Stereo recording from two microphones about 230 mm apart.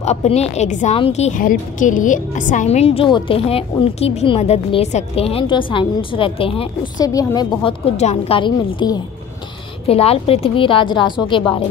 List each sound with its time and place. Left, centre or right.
0.0 s a woman's voice: left